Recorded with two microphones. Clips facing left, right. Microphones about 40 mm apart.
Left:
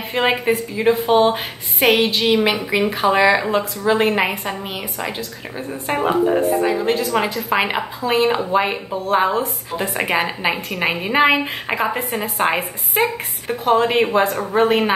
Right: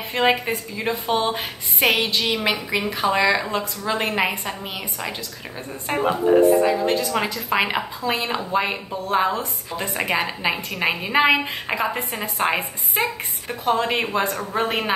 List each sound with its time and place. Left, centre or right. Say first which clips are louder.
0.1 s speech: left 2 dB; centre
13.0 s speech: left 5 dB; centre